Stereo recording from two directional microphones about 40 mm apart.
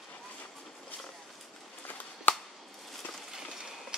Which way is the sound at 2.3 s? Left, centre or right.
Left.